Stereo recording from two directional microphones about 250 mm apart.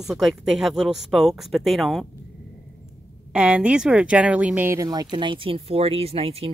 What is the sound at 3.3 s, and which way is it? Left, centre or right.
Speech, centre.